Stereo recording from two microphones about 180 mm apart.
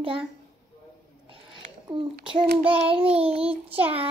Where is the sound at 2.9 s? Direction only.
30° right (ahead or behind).